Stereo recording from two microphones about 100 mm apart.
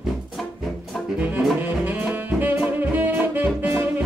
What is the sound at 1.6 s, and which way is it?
Saxophone, 20° right (ahead or behind).